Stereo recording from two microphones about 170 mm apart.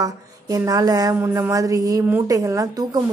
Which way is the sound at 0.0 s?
20° right (ahead or behind).